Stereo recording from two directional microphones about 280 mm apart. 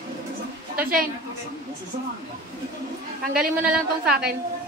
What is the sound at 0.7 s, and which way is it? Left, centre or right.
Speech, right.